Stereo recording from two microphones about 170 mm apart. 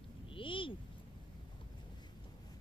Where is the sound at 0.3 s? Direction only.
30° left (ahead or behind).